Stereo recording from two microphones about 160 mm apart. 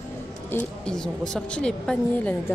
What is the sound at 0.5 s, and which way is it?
A woman's voice, 5° left (ahead or behind).